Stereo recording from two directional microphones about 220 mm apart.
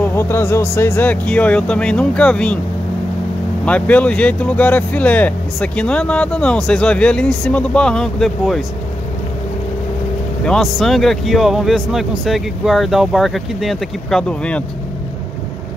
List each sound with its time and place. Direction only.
0.0 s speech: 10° left (ahead or behind)
3.6 s speech: 5° left (ahead or behind)
10.4 s speech: centre (ahead or behind)